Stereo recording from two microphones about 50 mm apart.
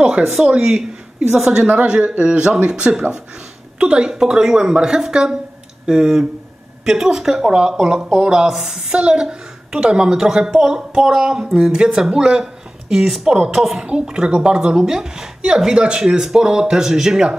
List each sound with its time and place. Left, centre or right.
0.0 s a woman's voice: centre
1.7 s a woman's voice: right; by 13.7 s centre
13.7 s a woman's voice: centre